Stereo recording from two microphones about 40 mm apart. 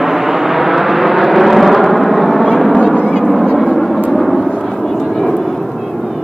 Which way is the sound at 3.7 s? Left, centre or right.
Centre.